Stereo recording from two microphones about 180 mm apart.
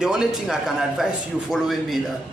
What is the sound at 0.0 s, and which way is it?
A man's voice, 5° right (ahead or behind).